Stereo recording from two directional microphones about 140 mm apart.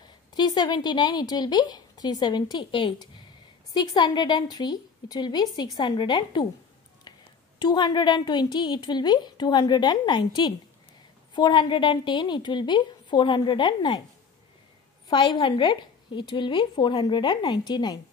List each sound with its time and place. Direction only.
0.3 s a woman's voice: 30° left (ahead or behind)
15.0 s a woman's voice: 35° left (ahead or behind)